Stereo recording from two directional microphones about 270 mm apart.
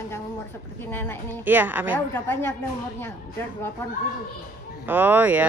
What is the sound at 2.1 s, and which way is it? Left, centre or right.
Speech, centre.